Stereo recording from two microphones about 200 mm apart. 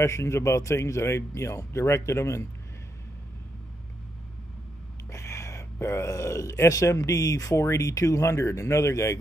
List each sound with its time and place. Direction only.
0.0 s speech: 15° left (ahead or behind)
5.1 s speech: 15° left (ahead or behind)